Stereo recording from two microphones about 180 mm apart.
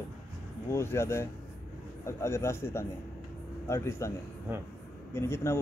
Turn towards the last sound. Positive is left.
turn(degrees=15)  # may be behind; listen again after turning